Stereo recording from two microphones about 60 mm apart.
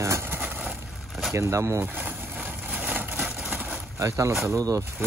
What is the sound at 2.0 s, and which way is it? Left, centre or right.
Vehicle, right.